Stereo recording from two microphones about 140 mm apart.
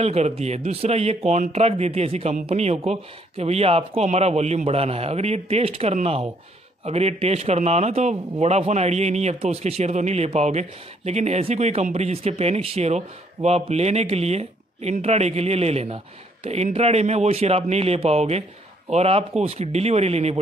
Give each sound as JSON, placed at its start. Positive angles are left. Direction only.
{"t": 0.0, "sound": "a man's voice", "side_deg": -50}